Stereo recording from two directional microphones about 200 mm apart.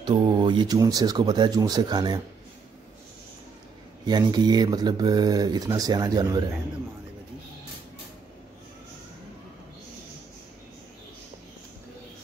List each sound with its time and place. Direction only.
0.0 s speech: 25° right (ahead or behind)
4.0 s speech: 20° right (ahead or behind)